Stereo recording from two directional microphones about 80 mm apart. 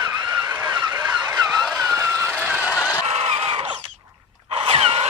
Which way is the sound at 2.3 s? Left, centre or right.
Centre.